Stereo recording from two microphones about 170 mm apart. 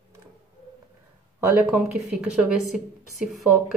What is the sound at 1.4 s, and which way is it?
A woman's voice, 10° right (ahead or behind).